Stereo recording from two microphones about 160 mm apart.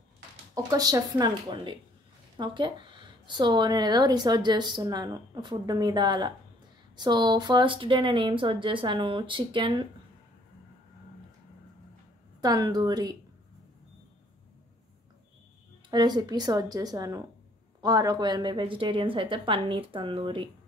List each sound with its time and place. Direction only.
0.7 s speech: 25° right (ahead or behind)
12.4 s speech: 25° right (ahead or behind)
15.9 s speech: 25° right (ahead or behind)